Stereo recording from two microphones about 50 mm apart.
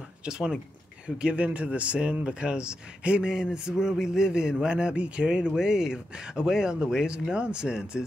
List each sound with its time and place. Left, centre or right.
0.2 s speech: centre